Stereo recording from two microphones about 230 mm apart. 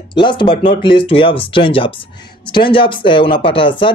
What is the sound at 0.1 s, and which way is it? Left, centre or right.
Speech, left.